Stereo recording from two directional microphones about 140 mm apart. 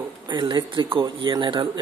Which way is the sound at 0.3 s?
35° right (ahead or behind).